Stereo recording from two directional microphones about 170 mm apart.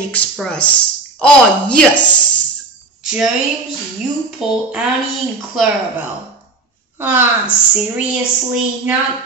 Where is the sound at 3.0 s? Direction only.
5° right (ahead or behind).